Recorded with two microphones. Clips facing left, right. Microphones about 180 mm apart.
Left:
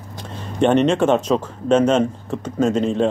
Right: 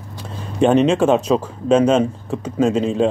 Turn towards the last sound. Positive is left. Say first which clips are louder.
# right 1 dB
turn(degrees=-5)  # may be behind; listen again after turning